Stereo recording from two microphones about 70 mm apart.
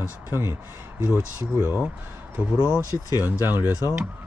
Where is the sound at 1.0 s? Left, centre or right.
Right.